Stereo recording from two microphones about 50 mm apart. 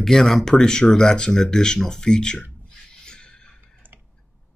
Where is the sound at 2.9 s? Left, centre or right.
Centre.